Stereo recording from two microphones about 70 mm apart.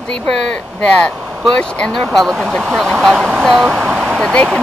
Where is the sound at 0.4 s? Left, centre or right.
Centre.